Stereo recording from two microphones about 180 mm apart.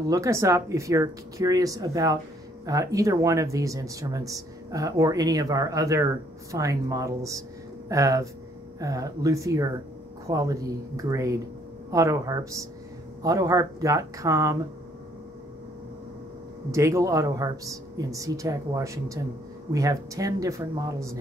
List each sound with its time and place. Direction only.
0.1 s speech: 15° right (ahead or behind)
16.7 s speech: 15° right (ahead or behind)